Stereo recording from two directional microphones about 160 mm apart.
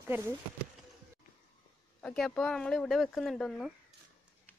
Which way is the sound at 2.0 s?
5° left (ahead or behind).